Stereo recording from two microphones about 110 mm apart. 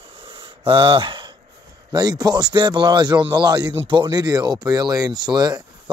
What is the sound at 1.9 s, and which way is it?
Speech, 40° right (ahead or behind).